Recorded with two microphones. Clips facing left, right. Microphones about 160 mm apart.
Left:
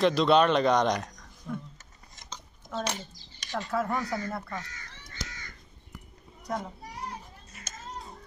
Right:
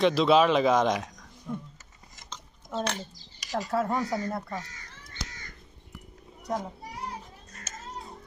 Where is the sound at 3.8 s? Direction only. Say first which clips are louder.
Right 2 dB; 25° right (ahead or behind).